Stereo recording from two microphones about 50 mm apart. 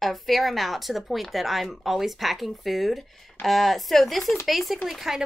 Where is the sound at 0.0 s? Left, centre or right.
Centre.